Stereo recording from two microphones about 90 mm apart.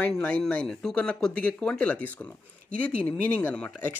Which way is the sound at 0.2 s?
15° left (ahead or behind).